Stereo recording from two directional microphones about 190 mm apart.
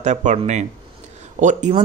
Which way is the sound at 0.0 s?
40° right (ahead or behind).